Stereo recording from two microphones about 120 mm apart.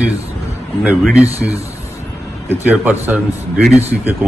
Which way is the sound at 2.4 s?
15° right (ahead or behind).